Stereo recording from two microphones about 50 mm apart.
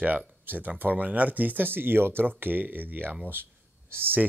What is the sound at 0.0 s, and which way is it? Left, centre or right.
Speech, right.